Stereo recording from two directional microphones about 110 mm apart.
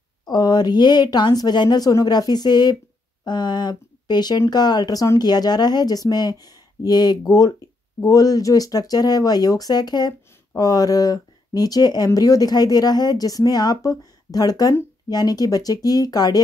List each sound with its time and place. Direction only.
0.3 s speech: 40° left (ahead or behind)